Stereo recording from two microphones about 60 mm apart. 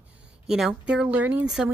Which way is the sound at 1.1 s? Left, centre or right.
Right.